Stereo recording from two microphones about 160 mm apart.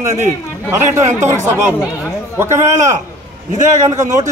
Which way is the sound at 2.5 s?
50° right (ahead or behind).